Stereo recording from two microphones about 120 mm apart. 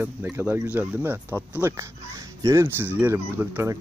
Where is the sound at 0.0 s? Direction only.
15° right (ahead or behind).